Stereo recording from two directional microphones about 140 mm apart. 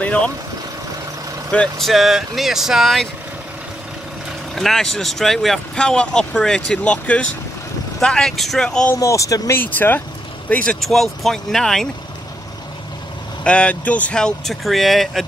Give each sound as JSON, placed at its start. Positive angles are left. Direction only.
{"t": 1.5, "sound": "speech", "side_deg": 5}
{"t": 4.6, "sound": "speech", "side_deg": 5}
{"t": 8.9, "sound": "speech", "side_deg": 20}
{"t": 13.4, "sound": "speech", "side_deg": 10}